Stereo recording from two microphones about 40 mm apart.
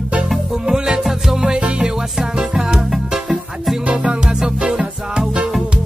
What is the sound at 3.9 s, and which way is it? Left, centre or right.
Music, centre.